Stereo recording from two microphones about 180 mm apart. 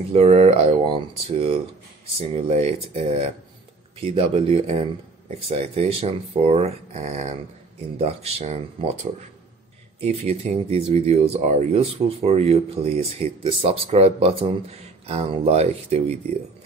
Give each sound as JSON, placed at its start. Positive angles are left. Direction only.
{"t": 0.1, "sound": "speech", "side_deg": -35}
{"t": 10.2, "sound": "speech", "side_deg": -35}